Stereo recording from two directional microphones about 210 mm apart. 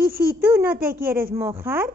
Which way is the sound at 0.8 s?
45° right (ahead or behind).